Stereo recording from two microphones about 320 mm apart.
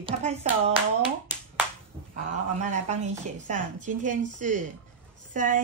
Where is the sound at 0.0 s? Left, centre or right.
Right.